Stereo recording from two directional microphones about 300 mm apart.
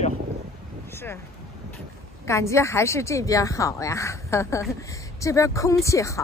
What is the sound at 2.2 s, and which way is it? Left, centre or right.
Speech, centre.